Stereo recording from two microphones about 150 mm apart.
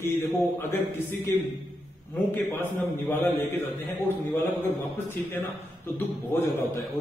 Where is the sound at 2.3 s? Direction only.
15° left (ahead or behind).